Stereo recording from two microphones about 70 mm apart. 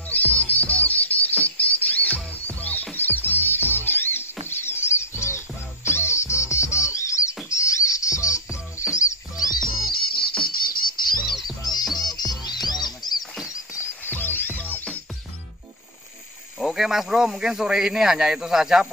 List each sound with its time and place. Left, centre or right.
0.1 s music: left
9.5 s music: left
10.4 s bird: left
11.8 s music: centre
12.1 s music: left
14.0 s music: left
16.5 s speech: centre